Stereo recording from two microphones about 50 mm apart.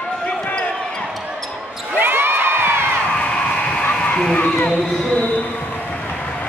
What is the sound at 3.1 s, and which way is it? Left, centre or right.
Crowd, left.